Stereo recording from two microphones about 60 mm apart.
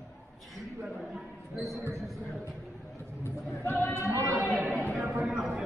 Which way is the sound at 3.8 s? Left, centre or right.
Left.